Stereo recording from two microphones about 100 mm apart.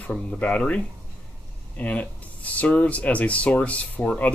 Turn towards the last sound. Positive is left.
turn(degrees=15)  # may be behind; listen again after turning